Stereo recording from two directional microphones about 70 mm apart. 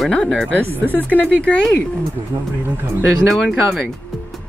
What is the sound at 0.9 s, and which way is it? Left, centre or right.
Speech, left.